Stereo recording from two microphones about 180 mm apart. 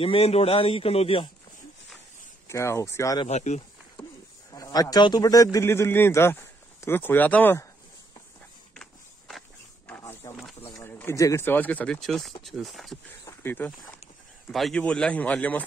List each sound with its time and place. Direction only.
0.0 s a man's voice: 30° left (ahead or behind)
2.4 s speech: 15° left (ahead or behind)
3.3 s a man's voice: 40° left (ahead or behind)
4.5 s a man's voice: 20° left (ahead or behind)
9.8 s a sound: 15° left (ahead or behind)
10.6 s speech: 10° left (ahead or behind)
13.2 s speech: 15° left (ahead or behind)